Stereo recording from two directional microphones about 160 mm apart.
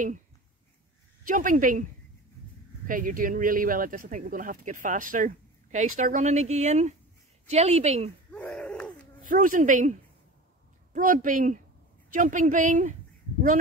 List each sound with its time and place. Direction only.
1.2 s speech: 55° right (ahead or behind)
2.9 s a woman's voice: 60° right (ahead or behind); by 8.1 s 40° right (ahead or behind)
8.3 s a sound: 10° left (ahead or behind)
9.2 s a woman's voice: 55° right (ahead or behind)